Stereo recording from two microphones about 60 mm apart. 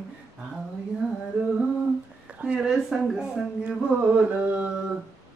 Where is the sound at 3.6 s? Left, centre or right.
Right.